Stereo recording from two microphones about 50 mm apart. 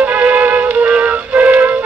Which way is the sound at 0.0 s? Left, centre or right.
Right.